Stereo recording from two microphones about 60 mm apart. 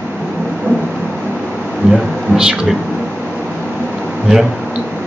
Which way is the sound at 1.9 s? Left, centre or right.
Centre.